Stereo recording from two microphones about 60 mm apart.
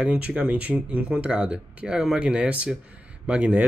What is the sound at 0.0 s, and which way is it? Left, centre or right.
Speech, centre.